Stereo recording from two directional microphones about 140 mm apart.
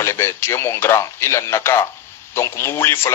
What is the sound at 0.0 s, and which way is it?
A man's voice, 20° left (ahead or behind).